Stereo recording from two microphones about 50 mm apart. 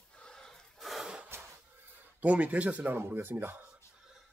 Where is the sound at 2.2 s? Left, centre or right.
Right.